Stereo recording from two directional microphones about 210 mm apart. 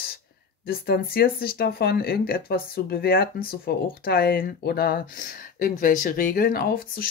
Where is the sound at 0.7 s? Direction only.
45° left (ahead or behind).